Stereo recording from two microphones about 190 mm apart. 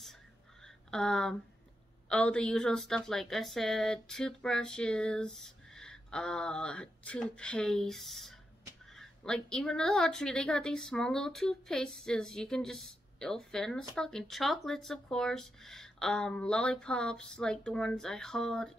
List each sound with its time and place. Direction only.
0.9 s a woman's voice: 5° left (ahead or behind)